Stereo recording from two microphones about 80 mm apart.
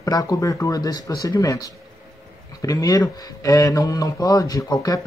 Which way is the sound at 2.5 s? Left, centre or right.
Left.